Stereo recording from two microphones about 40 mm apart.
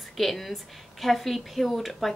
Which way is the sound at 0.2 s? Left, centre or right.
Centre.